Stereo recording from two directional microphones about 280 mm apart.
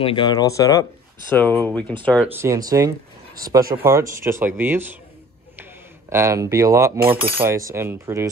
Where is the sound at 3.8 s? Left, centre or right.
Centre.